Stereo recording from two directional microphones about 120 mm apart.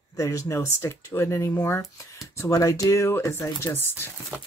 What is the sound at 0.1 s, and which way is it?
Speech, 25° left (ahead or behind).